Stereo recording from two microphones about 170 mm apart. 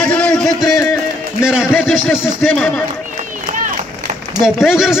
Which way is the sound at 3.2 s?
45° right (ahead or behind).